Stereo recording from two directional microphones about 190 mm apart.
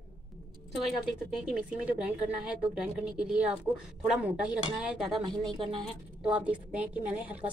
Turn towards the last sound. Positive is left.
turn(degrees=-10)  # may be behind; listen again after turning